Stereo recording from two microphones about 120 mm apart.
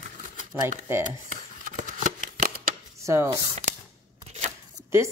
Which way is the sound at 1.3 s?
90° right.